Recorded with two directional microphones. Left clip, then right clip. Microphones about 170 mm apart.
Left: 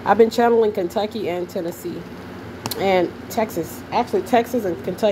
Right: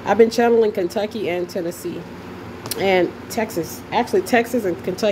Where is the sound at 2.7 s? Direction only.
15° right (ahead or behind).